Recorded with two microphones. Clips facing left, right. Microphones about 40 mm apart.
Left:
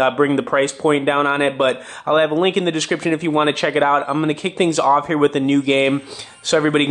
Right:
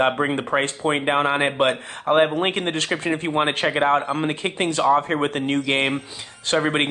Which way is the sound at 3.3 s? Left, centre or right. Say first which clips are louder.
Left 5 dB; left.